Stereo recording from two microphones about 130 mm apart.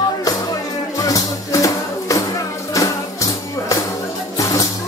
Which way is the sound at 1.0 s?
25° left (ahead or behind).